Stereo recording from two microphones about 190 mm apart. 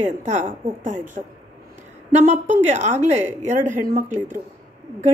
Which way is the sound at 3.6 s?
40° right (ahead or behind).